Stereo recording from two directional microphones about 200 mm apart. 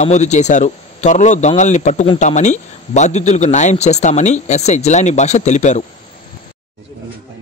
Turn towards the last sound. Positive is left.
turn(degrees=35)  # may be behind; listen again after turning